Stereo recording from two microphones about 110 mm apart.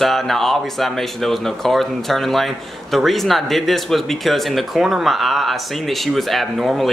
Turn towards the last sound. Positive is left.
turn(degrees=0)  # may be behind; listen again after turning